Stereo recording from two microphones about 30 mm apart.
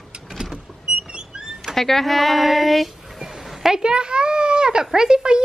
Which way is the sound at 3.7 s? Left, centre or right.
Right.